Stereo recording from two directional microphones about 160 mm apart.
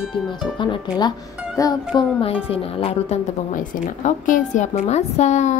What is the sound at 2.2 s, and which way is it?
Speech, 35° left (ahead or behind).